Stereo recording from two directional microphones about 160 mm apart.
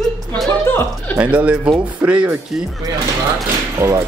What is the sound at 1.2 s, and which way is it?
Speech, 10° right (ahead or behind).